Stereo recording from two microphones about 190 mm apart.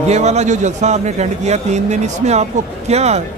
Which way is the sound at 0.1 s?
35° right (ahead or behind).